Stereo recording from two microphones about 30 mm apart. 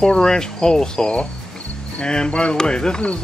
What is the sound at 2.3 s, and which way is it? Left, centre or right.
Speech, left.